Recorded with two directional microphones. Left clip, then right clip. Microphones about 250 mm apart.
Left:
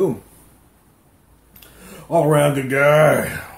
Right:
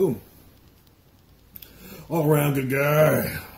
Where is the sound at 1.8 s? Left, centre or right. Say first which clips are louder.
Left 9 dB; centre.